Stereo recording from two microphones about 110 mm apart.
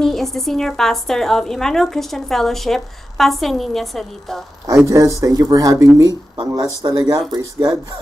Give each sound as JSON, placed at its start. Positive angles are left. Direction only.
{"t": 0.0, "sound": "a woman's voice", "side_deg": 0}
{"t": 4.6, "sound": "speech", "side_deg": -30}